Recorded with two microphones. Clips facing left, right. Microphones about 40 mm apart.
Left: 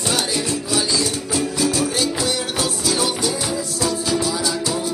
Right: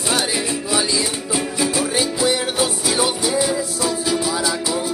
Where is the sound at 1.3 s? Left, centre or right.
Right.